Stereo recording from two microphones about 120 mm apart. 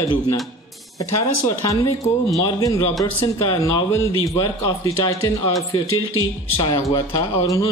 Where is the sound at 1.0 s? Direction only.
30° left (ahead or behind).